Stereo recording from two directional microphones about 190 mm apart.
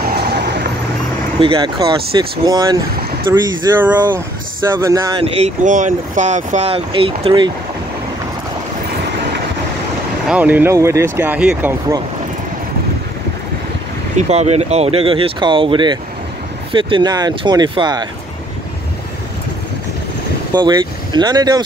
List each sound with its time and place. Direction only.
1.4 s speech: 20° right (ahead or behind)
3.8 s speech: 10° right (ahead or behind)
5.2 s speech: 30° right (ahead or behind)
10.2 s speech: 10° right (ahead or behind)
14.1 s speech: 35° right (ahead or behind)
20.5 s speech: 25° right (ahead or behind)